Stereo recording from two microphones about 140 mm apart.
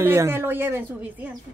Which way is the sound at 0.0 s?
15° right (ahead or behind).